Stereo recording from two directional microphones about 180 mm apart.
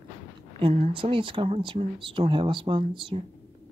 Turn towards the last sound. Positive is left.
turn(degrees=-30)  # may be behind; listen again after turning